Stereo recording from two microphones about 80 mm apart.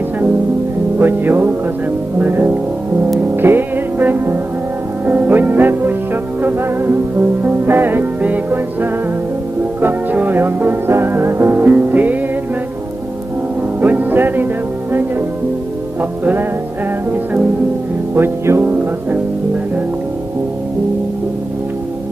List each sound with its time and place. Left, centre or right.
0.9 s music: right
2.1 s speech: right
3.2 s music: right
13.7 s music: right
18.1 s music: right